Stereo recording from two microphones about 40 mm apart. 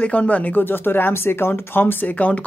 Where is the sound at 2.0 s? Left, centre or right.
Left.